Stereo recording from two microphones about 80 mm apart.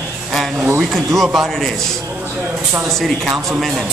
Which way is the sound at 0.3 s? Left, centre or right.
Centre.